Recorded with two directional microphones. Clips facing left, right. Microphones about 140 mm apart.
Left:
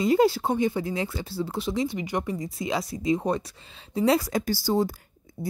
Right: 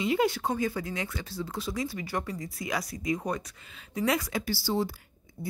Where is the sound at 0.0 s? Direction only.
35° left (ahead or behind).